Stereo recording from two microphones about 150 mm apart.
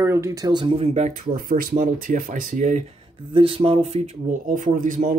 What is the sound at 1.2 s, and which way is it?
Speech, 65° right (ahead or behind).